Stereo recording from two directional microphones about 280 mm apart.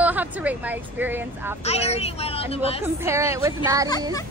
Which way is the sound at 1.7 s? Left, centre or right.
Left.